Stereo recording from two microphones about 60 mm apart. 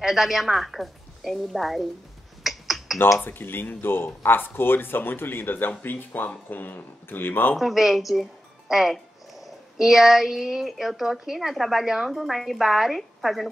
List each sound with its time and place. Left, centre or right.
0.0 s a woman's voice: centre
2.4 s finger snapping: centre
3.3 s speech: left
7.5 s speech: centre